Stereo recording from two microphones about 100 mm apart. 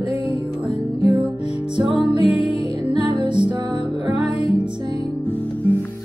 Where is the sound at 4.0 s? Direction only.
90° left.